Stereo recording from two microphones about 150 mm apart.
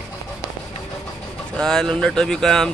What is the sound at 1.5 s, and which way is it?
Speech, 5° left (ahead or behind).